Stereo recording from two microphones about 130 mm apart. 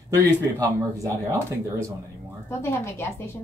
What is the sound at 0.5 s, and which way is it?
Speech, 25° right (ahead or behind).